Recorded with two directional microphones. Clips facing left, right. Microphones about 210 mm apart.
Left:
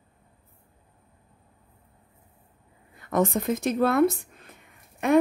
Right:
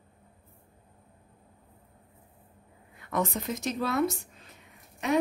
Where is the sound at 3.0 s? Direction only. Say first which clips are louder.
Left 6 dB; 45° left (ahead or behind).